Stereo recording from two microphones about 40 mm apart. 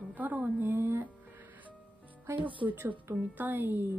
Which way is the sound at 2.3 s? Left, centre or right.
Right.